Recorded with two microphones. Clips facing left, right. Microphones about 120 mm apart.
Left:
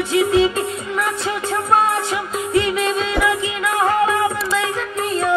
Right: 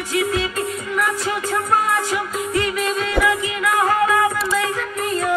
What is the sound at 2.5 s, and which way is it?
Music, 25° left (ahead or behind).